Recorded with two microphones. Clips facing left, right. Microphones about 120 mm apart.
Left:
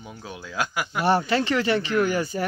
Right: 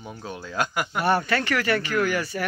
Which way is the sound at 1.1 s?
25° left (ahead or behind).